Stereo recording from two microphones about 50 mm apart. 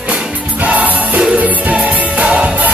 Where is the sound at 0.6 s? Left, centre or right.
Right.